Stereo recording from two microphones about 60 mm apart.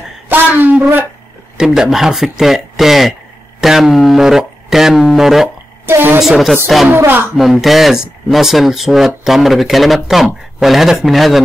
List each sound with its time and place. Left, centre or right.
0.3 s speech: right
1.6 s speech: centre
5.9 s a woman's voice: right
6.1 s speech: centre
7.1 s speech: right
7.3 s speech: centre